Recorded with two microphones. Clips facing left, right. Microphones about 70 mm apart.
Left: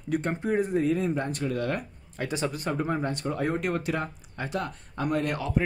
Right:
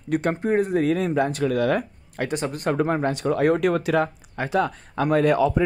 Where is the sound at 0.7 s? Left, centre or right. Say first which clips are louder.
Right 4 dB; right.